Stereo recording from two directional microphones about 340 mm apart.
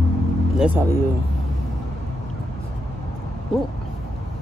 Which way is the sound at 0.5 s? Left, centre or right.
Centre.